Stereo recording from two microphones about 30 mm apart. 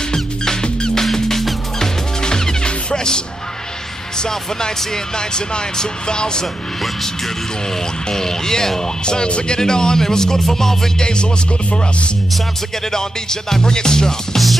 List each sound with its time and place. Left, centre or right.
0.1 s music: left
4.3 s speech: centre
8.1 s speech: centre
9.0 s speech: left; by 10.9 s centre
11.0 s music: left
12.9 s speech: centre